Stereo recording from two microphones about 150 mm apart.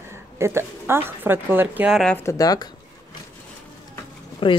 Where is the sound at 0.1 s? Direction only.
15° right (ahead or behind).